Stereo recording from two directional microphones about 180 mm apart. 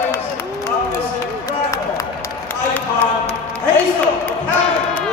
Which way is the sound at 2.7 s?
10° left (ahead or behind).